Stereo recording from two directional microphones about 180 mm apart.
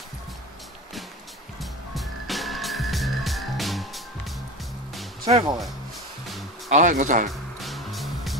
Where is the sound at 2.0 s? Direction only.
Centre (ahead or behind).